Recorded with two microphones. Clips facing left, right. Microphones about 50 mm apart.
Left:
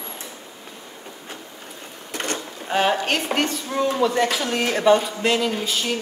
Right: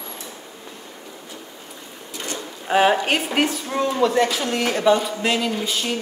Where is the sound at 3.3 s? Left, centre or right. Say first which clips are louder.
Right 2 dB; centre.